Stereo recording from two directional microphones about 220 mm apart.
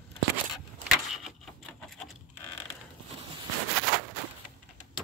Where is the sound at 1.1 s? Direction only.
Centre (ahead or behind).